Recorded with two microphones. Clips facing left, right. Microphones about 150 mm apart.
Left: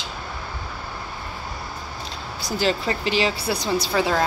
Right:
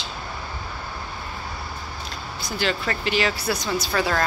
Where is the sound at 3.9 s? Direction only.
10° left (ahead or behind).